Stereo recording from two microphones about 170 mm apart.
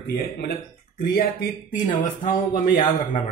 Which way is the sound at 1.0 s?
60° left (ahead or behind).